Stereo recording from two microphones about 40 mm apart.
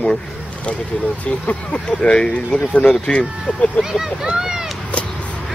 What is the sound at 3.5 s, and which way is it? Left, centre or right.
Speech, left.